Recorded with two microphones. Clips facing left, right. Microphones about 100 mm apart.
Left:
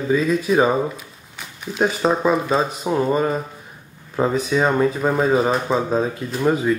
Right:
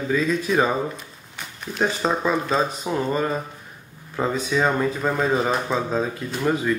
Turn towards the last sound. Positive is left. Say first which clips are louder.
# left 3 dB
turn(degrees=10)  # may be behind; listen again after turning